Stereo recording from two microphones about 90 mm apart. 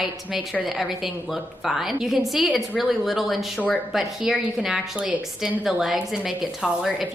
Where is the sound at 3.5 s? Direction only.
15° left (ahead or behind).